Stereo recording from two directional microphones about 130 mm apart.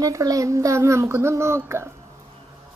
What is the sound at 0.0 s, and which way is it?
Speech, 25° right (ahead or behind).